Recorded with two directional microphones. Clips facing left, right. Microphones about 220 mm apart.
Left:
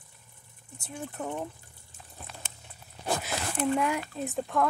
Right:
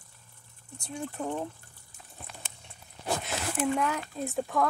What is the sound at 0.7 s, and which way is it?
Speech, 5° left (ahead or behind).